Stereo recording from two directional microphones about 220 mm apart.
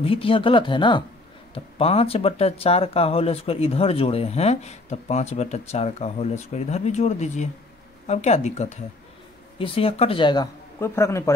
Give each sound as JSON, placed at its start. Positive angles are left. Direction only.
{"t": 0.0, "sound": "speech", "side_deg": 25}